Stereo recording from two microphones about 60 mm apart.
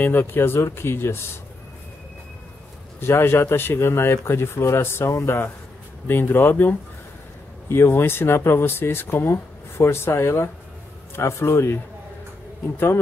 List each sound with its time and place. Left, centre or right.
0.0 s speech: left
3.0 s speech: left
6.0 s speech: left